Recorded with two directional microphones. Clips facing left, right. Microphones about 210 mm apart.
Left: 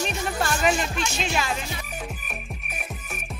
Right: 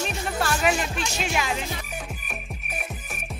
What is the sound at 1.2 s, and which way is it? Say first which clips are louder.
Speech: right 1 dB; 15° right (ahead or behind).